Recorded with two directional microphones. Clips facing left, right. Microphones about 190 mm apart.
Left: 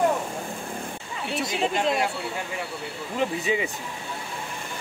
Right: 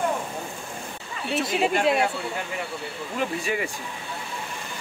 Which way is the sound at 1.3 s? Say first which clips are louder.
Right 3 dB; 5° right (ahead or behind).